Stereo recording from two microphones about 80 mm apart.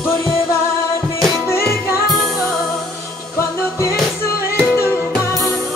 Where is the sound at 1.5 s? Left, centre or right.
Left.